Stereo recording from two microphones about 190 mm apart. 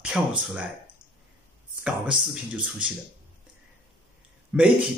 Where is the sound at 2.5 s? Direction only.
5° right (ahead or behind).